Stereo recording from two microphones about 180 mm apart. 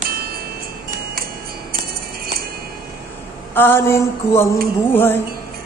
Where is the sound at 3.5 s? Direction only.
10° left (ahead or behind).